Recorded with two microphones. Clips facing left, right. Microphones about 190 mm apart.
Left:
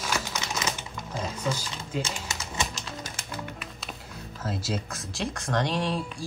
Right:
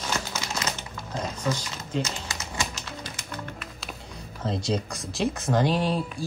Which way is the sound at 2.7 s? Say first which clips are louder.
Even; 45° left (ahead or behind).